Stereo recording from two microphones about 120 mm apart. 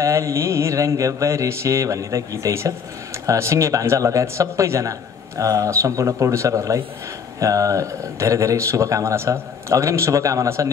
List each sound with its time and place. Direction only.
0.0 s speech: 25° right (ahead or behind)